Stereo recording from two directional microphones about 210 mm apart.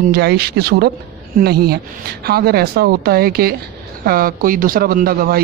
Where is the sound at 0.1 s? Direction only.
50° right (ahead or behind).